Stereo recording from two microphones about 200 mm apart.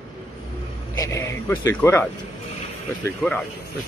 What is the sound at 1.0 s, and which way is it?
Speech, 15° left (ahead or behind).